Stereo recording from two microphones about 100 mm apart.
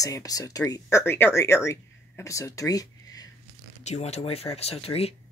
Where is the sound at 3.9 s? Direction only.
90° left.